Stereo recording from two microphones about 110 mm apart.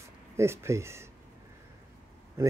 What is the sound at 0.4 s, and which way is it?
Speech, 25° right (ahead or behind).